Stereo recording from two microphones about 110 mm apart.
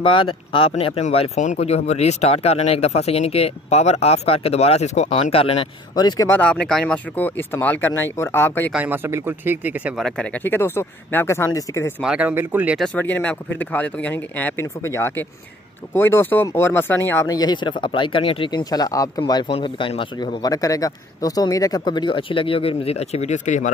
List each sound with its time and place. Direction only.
0.0 s speech: 50° left (ahead or behind)
5.9 s speech: 40° left (ahead or behind)
6.4 s speech: 10° left (ahead or behind)
8.7 s speech: 15° right (ahead or behind)
9.9 s speech: 5° left (ahead or behind); by 11.9 s 25° left (ahead or behind)
12.0 s speech: 10° right (ahead or behind)
12.9 s speech: 15° left (ahead or behind)
17.3 s speech: 40° left (ahead or behind)
20.4 s speech: 35° left (ahead or behind); by 23.6 s 90° left